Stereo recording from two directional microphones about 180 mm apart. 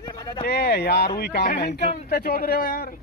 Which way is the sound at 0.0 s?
25° left (ahead or behind).